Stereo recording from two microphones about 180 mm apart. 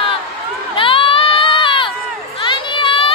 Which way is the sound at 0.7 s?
30° left (ahead or behind).